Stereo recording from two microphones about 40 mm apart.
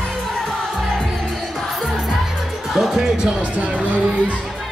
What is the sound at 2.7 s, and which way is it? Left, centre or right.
Music, centre.